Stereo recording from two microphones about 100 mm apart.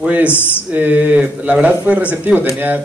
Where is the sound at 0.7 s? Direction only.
15° right (ahead or behind).